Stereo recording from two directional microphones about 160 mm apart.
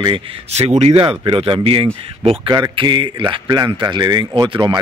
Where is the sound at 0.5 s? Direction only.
45° right (ahead or behind).